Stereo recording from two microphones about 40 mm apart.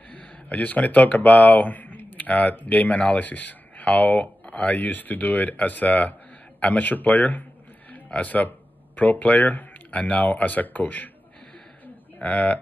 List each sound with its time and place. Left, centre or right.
0.1 s speech: left
12.2 s speech: left